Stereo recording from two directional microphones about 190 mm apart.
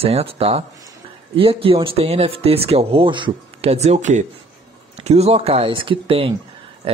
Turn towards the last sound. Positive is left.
turn(degrees=-30)  # may be behind; listen again after turning